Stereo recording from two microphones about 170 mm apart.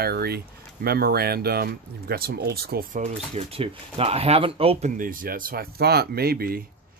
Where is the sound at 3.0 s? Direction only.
40° right (ahead or behind).